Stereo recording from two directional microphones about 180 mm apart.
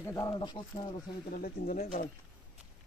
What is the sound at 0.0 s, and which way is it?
Speech, 15° left (ahead or behind).